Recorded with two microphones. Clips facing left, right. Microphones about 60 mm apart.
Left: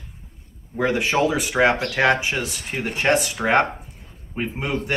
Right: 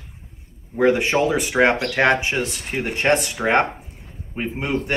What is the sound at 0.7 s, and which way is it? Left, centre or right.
Speech, centre.